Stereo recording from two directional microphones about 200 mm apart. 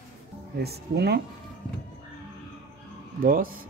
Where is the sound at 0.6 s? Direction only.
55° right (ahead or behind).